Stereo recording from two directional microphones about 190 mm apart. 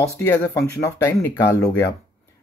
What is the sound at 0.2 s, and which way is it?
Speech, 15° left (ahead or behind).